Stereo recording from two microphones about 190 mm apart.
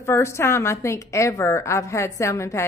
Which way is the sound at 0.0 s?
15° left (ahead or behind).